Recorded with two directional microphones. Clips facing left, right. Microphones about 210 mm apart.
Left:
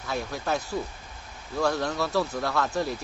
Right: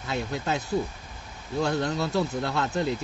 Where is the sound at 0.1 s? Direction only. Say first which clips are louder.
Even; 20° right (ahead or behind).